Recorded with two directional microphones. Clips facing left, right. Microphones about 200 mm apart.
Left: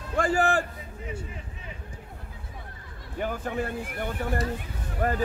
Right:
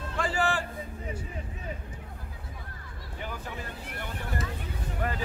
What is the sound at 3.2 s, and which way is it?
A man's voice, 50° left (ahead or behind).